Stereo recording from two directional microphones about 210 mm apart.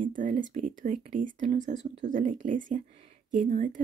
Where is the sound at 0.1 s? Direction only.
40° right (ahead or behind).